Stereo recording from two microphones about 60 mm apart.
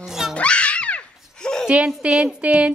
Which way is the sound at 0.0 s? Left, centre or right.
Centre.